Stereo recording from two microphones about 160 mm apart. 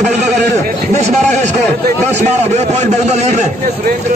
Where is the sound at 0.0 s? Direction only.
50° right (ahead or behind).